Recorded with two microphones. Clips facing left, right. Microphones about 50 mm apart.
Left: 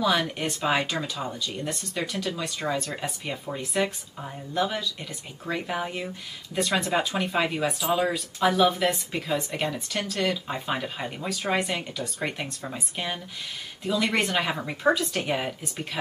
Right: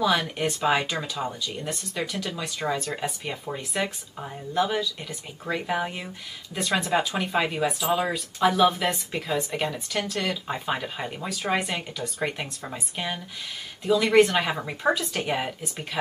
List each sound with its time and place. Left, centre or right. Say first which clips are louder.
0.0 s speech: right 1 dB; centre